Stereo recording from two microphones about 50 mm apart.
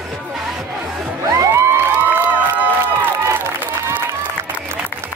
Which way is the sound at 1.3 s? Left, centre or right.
Right.